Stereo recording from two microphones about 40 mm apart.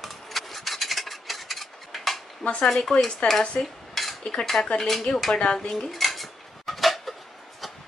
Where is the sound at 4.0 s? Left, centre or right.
Centre.